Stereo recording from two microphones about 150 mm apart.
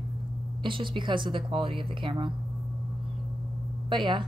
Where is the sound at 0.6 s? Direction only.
35° right (ahead or behind).